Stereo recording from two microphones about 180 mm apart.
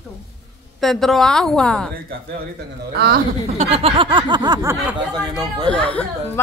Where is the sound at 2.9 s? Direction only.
60° right (ahead or behind).